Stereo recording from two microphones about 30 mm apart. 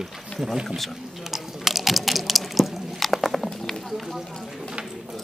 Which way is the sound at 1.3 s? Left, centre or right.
Centre.